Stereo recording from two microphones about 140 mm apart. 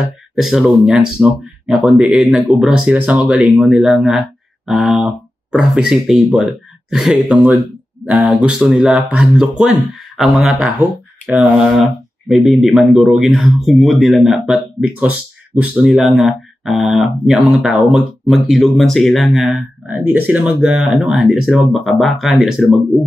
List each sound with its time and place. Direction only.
0.4 s speech: centre (ahead or behind)